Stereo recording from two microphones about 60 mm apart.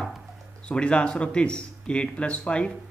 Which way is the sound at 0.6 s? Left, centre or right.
Centre.